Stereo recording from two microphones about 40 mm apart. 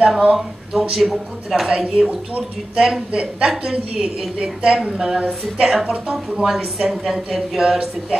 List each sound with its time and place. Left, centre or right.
0.2 s a woman's voice: right
0.9 s a woman's voice: centre
1.7 s a woman's voice: centre